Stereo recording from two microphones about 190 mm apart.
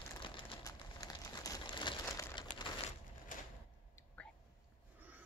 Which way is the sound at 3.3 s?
45° left (ahead or behind).